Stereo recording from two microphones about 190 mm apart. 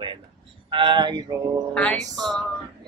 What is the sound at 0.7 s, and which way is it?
Speech, 25° right (ahead or behind).